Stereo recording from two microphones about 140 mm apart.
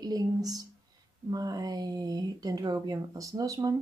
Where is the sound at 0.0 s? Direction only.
25° right (ahead or behind).